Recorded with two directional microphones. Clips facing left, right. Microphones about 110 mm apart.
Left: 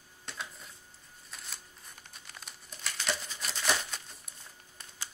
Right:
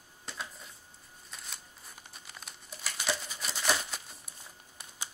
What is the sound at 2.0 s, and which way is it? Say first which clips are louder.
Crumpling: even; 5° right (ahead or behind).